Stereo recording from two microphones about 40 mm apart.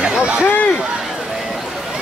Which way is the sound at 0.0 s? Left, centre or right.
Right.